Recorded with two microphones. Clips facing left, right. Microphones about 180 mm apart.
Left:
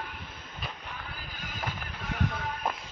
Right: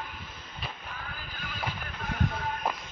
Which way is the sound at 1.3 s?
45° left (ahead or behind).